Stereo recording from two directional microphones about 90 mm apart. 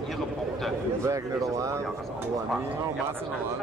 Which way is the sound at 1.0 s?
35° right (ahead or behind).